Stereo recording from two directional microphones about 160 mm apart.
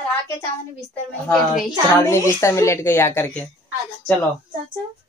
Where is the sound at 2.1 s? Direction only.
15° left (ahead or behind).